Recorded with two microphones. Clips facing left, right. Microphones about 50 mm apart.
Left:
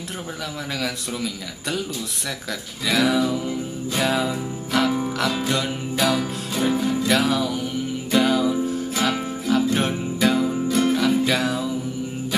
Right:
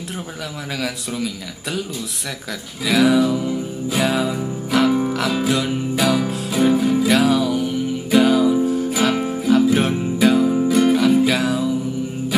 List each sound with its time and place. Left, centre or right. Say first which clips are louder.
0.7 s a man's voice: right 4 dB; centre
2.9 s music: right 4 dB; centre